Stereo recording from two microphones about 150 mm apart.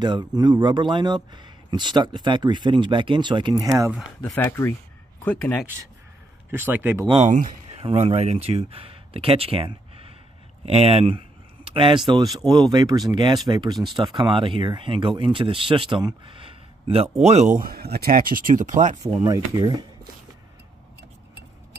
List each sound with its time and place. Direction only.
0.0 s speech: 30° right (ahead or behind)
4.2 s speech: 15° left (ahead or behind)
6.5 s speech: 15° right (ahead or behind)
7.2 s speech: 55° right (ahead or behind)
7.8 s speech: 40° right (ahead or behind)
10.6 s a sound: 45° right (ahead or behind)
12.4 s speech: 25° right (ahead or behind); by 17.5 s 45° right (ahead or behind)
17.6 s speech: 85° right; by 18.9 s 55° right (ahead or behind)
19.2 s speech: 25° right (ahead or behind)